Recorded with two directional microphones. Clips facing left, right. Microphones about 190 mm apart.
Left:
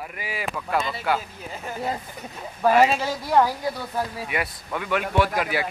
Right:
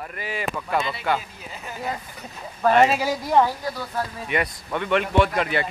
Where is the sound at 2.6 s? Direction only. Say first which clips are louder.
Right 1 dB; 5° left (ahead or behind).